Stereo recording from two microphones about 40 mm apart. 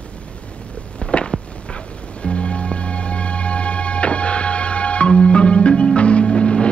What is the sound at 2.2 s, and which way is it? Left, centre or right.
Music, left.